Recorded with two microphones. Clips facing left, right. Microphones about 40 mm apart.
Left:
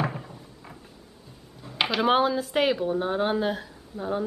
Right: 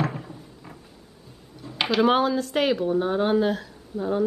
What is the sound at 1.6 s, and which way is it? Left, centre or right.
Speech, centre.